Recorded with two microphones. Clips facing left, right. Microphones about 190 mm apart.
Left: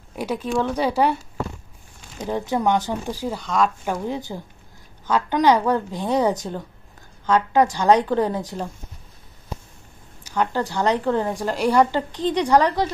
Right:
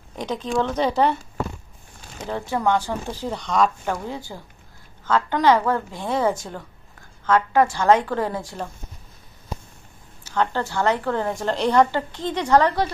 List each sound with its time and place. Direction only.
0.1 s a woman's voice: 10° left (ahead or behind)
2.2 s a woman's voice: 15° left (ahead or behind); by 3.7 s centre (ahead or behind)
3.8 s a woman's voice: 15° left (ahead or behind)
10.2 s a woman's voice: 15° left (ahead or behind)